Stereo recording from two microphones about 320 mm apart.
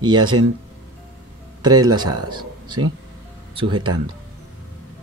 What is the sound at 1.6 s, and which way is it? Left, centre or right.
Speech, centre.